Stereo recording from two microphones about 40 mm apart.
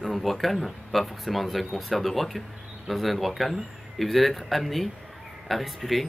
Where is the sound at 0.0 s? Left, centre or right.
Centre.